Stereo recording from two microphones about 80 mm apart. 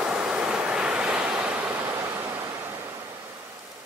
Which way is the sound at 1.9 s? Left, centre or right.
Right.